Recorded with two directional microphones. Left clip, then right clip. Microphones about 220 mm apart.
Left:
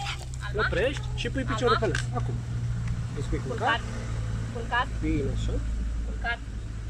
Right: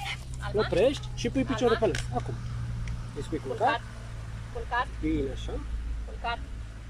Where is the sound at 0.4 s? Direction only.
30° right (ahead or behind).